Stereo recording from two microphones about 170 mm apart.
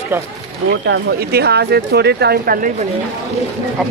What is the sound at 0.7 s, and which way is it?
Speech, 75° right (ahead or behind).